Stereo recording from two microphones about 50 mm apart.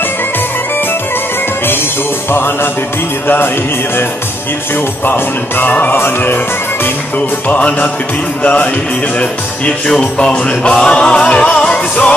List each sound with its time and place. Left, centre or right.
2.3 s music: left
5.0 s music: left
7.4 s speech: left
8.4 s music: left
9.2 s speech: centre